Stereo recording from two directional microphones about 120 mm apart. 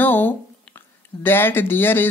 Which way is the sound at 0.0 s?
15° left (ahead or behind).